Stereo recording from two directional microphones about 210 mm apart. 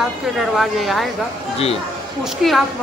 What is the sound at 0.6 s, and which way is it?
Speech, centre (ahead or behind).